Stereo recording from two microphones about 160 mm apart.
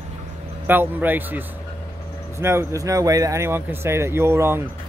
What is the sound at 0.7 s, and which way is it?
Speech, 10° right (ahead or behind).